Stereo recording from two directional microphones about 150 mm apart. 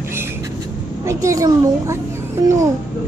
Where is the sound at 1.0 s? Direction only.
20° right (ahead or behind).